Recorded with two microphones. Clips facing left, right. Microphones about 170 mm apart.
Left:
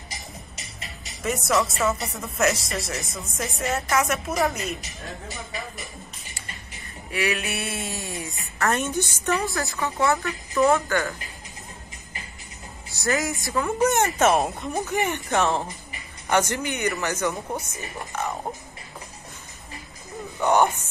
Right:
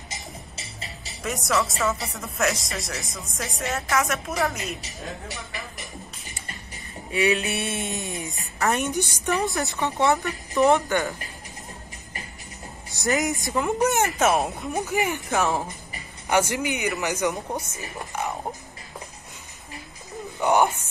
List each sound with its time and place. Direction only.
1.0 s a woman's voice: centre (ahead or behind)
7.1 s a sound: 25° right (ahead or behind)
7.4 s a woman's voice: centre (ahead or behind)
7.9 s a woman's voice: 20° right (ahead or behind)
13.0 s a woman's voice: 20° right (ahead or behind)
14.0 s a woman's voice: centre (ahead or behind)
18.1 s music: 10° right (ahead or behind)
20.3 s speech: 10° right (ahead or behind)